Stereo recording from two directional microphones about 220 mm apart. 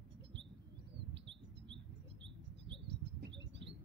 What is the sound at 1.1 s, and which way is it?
Bird, 55° right (ahead or behind).